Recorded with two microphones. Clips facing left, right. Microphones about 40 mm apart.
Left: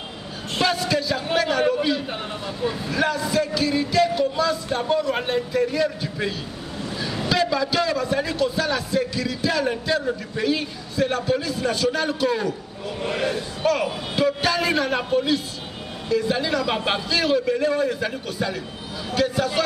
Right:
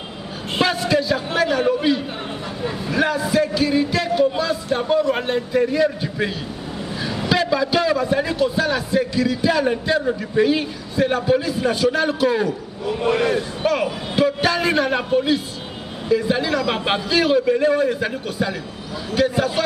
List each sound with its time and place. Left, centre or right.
0.6 s a man's voice: centre